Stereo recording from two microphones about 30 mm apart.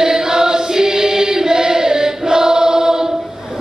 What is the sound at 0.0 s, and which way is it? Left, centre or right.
Choir, centre.